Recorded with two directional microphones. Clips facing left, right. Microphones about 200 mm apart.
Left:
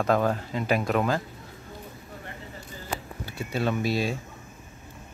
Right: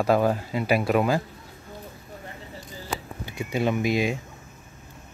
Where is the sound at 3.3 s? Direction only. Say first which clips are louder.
Right 3 dB; 15° right (ahead or behind).